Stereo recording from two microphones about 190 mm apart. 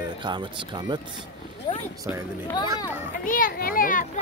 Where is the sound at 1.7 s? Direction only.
25° left (ahead or behind).